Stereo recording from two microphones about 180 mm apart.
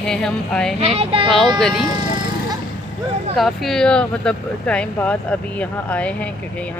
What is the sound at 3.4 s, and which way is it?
Speech, centre (ahead or behind).